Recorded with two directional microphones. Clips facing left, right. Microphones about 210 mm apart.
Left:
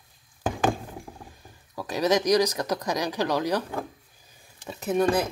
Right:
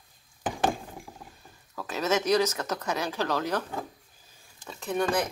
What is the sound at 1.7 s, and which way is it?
Speech, 15° left (ahead or behind).